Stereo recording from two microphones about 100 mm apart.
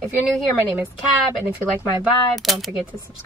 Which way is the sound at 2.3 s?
Centre (ahead or behind).